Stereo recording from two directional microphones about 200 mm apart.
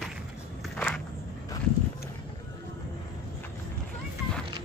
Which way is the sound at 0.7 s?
5° left (ahead or behind).